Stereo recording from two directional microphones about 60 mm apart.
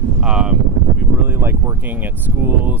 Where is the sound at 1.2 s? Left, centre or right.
Right.